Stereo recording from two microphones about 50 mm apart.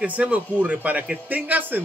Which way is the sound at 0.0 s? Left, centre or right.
Right.